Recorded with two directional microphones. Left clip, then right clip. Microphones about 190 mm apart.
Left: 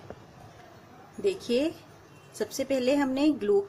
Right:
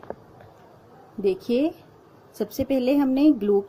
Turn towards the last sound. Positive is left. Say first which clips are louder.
# right 5 dB
turn(degrees=-50)  # may be behind; listen again after turning